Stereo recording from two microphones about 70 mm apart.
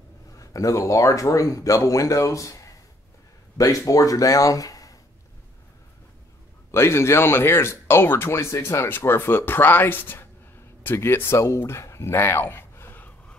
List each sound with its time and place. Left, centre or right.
0.4 s speech: left
6.7 s speech: left
8.8 s speech: left